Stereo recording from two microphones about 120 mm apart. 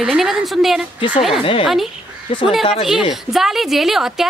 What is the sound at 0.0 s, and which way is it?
Speech, 5° right (ahead or behind).